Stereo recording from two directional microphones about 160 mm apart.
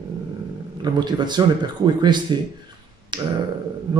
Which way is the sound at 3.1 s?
30° right (ahead or behind).